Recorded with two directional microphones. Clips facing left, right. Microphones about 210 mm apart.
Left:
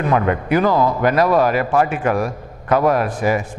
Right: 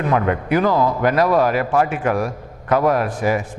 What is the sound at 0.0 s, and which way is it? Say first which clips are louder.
A man's voice: left 1 dB; 20° left (ahead or behind).